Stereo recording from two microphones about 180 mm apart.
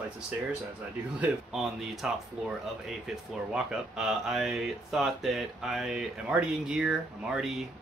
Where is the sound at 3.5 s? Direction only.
5° right (ahead or behind).